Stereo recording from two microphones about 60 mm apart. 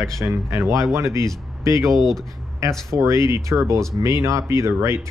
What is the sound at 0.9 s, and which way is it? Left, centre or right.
Speech, right.